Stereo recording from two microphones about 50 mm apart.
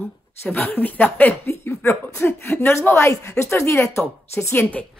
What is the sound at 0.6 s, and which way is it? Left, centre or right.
Speech, left.